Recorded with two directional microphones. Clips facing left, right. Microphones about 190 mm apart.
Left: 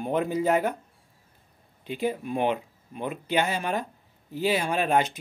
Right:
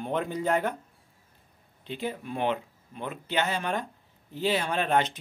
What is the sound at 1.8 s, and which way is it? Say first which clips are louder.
Speech: left 5 dB; 10° left (ahead or behind).